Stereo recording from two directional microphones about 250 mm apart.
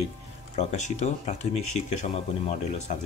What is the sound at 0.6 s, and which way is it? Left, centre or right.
Speech, left.